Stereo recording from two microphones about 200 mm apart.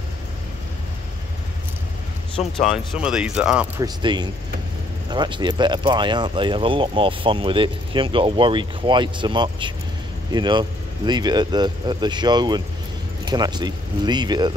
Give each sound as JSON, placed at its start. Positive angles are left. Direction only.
{"t": 2.6, "sound": "speech", "side_deg": 0}
{"t": 3.8, "sound": "speech", "side_deg": -20}